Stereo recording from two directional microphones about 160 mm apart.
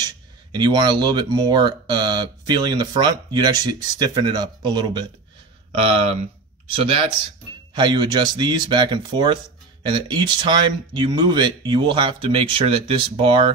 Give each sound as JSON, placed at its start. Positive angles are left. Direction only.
{"t": 0.0, "sound": "speech", "side_deg": -25}
{"t": 5.7, "sound": "speech", "side_deg": -40}